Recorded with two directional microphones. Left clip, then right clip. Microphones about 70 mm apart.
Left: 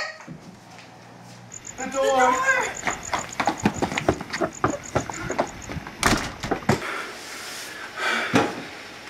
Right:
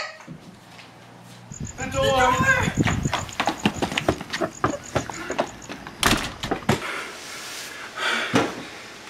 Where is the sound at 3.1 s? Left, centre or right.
Centre.